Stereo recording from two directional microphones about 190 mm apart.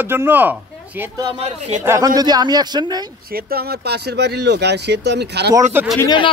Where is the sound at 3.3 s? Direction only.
50° right (ahead or behind).